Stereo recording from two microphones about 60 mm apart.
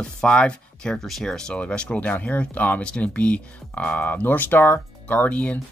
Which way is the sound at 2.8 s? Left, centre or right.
Centre.